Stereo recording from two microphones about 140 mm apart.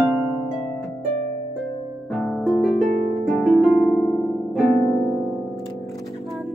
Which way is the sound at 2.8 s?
65° right (ahead or behind).